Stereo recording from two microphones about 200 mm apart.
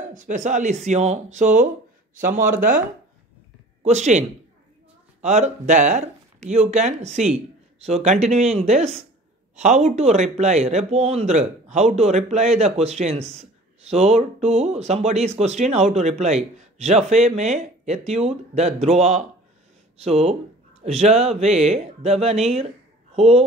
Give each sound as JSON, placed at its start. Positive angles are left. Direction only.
{"t": 0.1, "sound": "speech", "side_deg": -40}
{"t": 3.8, "sound": "speech", "side_deg": -35}
{"t": 5.2, "sound": "speech", "side_deg": -35}